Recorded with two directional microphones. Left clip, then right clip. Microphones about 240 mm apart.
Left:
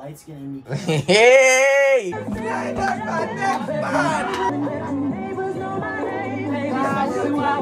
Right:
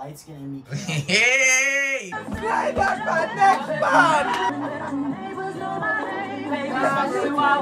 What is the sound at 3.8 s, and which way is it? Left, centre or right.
Speech, centre.